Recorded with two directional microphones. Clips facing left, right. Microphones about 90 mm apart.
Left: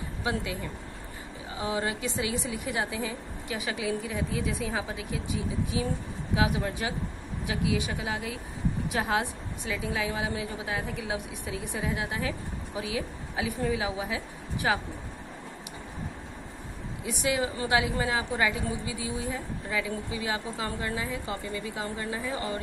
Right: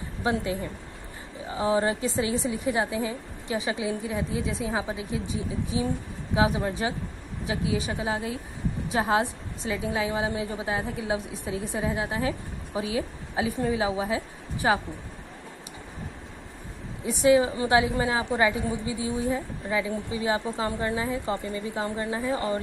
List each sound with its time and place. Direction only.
0.2 s a woman's voice: 30° right (ahead or behind)
17.0 s a woman's voice: 35° right (ahead or behind)